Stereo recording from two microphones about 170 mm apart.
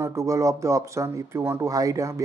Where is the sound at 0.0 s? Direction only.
20° right (ahead or behind).